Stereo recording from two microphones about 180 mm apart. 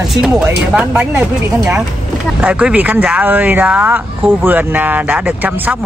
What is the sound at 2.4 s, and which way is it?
Speech, 10° right (ahead or behind).